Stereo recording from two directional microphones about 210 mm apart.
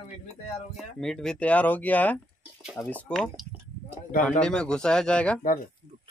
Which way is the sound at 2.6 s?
5° right (ahead or behind).